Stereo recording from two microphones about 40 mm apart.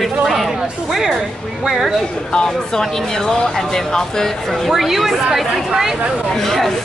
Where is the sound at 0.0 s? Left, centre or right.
Centre.